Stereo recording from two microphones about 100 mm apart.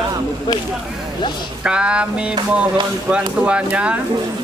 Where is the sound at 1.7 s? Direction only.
10° right (ahead or behind).